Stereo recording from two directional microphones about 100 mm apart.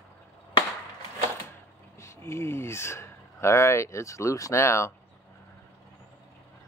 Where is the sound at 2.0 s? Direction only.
25° left (ahead or behind).